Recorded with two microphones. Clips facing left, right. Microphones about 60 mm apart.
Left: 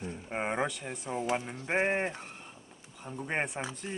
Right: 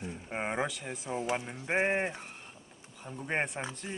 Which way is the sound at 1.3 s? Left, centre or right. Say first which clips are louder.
Left 1 dB; centre.